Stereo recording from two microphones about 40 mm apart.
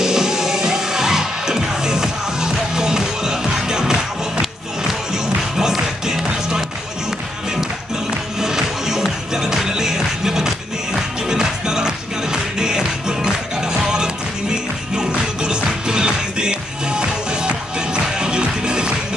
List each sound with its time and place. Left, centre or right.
0.0 s music: centre
8.4 s music: centre